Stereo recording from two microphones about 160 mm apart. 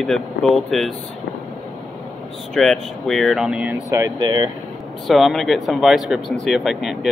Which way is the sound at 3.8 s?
20° right (ahead or behind).